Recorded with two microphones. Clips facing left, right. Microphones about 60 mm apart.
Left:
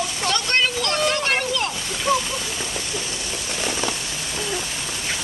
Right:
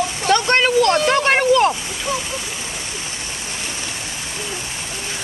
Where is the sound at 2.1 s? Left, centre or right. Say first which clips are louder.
Left 4 dB; left.